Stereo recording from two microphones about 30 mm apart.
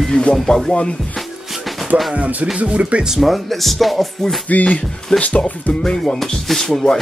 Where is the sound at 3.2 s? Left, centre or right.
Centre.